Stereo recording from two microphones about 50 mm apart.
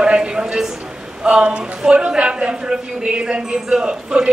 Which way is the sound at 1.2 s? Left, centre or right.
Right.